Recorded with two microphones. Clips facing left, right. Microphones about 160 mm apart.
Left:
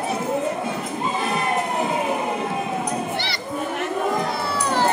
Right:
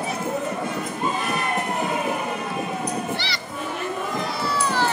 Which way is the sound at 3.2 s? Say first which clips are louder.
Left 4 dB; 55° left (ahead or behind).